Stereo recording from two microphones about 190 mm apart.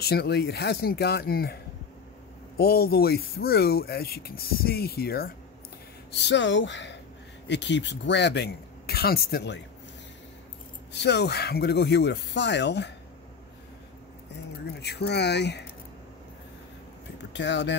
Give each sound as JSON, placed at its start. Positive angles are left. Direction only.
{"t": 0.0, "sound": "speech", "side_deg": 55}
{"t": 6.1, "sound": "speech", "side_deg": 70}
{"t": 10.9, "sound": "speech", "side_deg": 65}
{"t": 14.7, "sound": "speech", "side_deg": 60}
{"t": 17.3, "sound": "speech", "side_deg": 70}